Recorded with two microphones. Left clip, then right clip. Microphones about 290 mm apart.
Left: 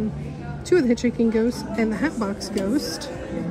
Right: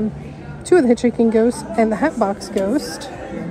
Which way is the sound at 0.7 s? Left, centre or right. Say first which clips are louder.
Right 6 dB; centre.